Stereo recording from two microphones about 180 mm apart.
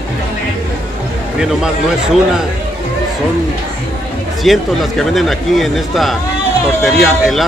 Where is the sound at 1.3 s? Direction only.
5° right (ahead or behind).